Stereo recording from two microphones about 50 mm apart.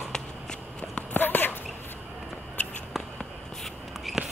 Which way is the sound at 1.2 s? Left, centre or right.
Left.